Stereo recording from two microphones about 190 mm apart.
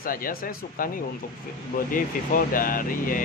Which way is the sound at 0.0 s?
50° left (ahead or behind).